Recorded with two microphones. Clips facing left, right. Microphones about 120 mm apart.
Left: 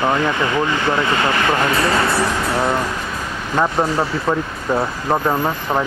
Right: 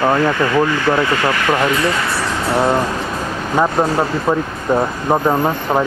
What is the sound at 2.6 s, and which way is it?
Speech, 20° right (ahead or behind).